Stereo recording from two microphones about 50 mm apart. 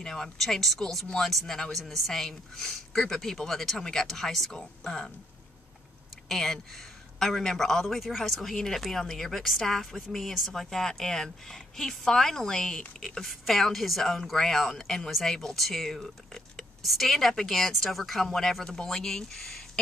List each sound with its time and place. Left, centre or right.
0.0 s a woman's voice: centre
6.2 s a man's voice: centre